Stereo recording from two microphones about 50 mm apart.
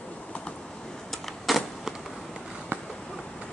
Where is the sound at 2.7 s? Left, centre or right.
Right.